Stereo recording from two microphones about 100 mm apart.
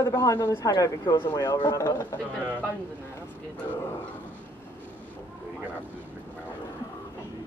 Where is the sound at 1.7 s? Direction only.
30° left (ahead or behind).